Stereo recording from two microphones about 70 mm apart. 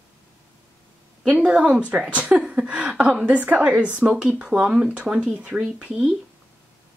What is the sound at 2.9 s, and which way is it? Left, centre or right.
Speech, centre.